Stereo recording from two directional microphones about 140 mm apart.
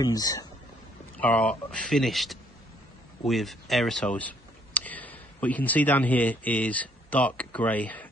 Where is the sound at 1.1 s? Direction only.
10° left (ahead or behind).